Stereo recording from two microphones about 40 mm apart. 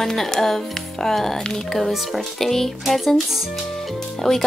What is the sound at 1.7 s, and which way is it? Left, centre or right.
Speech, centre.